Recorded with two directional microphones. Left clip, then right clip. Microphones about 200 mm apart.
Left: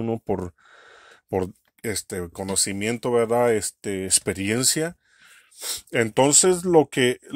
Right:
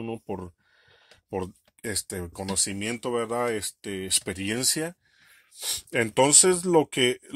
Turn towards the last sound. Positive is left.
turn(degrees=25)  # may be behind; listen again after turning